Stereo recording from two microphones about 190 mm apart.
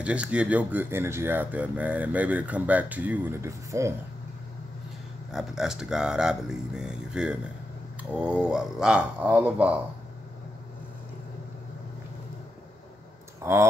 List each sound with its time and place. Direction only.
0.0 s speech: 5° right (ahead or behind)
5.3 s speech: centre (ahead or behind)
13.4 s speech: 15° right (ahead or behind)